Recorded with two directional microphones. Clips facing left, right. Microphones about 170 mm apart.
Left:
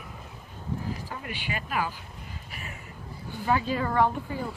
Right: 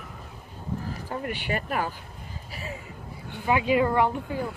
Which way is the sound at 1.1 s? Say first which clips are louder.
Right 6 dB; 50° right (ahead or behind).